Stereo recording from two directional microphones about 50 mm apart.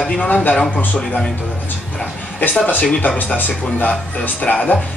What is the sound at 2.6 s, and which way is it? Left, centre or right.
Speech, left.